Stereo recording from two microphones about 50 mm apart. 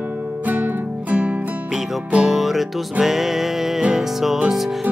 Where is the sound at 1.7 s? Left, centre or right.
Centre.